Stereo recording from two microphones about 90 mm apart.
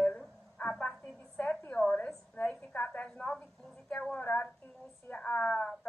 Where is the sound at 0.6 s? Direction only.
10° left (ahead or behind).